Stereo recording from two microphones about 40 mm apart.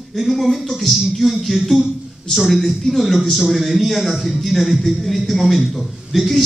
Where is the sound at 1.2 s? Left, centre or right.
Centre.